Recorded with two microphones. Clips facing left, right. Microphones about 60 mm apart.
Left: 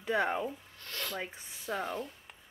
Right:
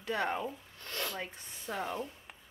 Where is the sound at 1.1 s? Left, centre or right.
Centre.